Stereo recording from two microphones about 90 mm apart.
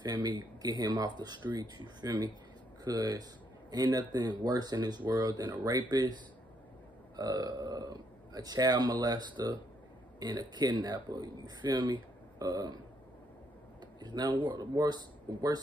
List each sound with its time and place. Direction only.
0.0 s speech: 55° right (ahead or behind)
13.9 s speech: 55° right (ahead or behind)